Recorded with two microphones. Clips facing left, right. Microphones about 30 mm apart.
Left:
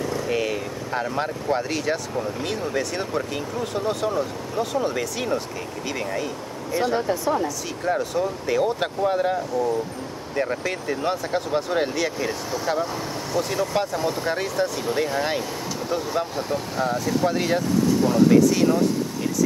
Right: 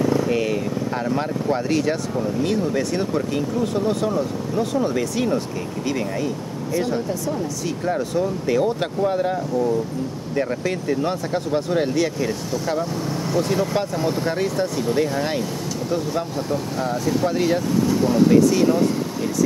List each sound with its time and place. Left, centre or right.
0.0 s vehicle: centre
0.3 s speech: centre
6.7 s speech: centre
7.0 s speech: left
7.8 s speech: centre